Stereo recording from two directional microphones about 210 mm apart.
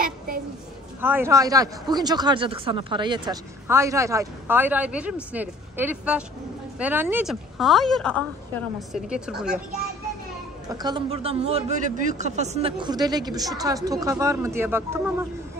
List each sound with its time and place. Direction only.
1.0 s speech: 10° right (ahead or behind)
10.7 s a man's voice: 20° right (ahead or behind)